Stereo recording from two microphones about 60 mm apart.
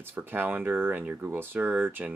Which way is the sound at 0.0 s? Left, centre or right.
Right.